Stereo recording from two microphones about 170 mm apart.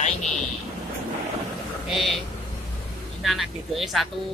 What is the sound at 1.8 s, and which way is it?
Speech, centre (ahead or behind).